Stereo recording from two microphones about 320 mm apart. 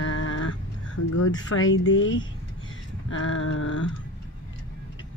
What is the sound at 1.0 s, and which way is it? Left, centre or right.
Speech, left.